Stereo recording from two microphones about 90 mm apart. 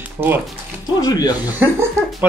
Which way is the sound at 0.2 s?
25° right (ahead or behind).